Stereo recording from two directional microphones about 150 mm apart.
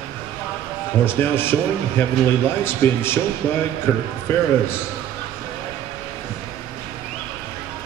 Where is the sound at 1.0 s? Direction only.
15° left (ahead or behind).